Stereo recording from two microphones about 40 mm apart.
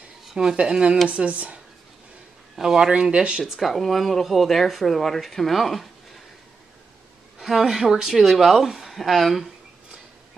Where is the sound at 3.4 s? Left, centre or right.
Centre.